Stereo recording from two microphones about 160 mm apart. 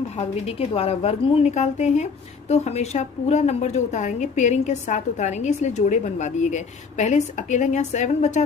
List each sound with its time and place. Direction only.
0.5 s speech: 40° left (ahead or behind)